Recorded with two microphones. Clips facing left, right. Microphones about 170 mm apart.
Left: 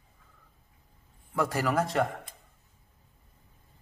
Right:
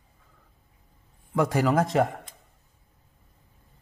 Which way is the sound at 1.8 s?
Centre (ahead or behind).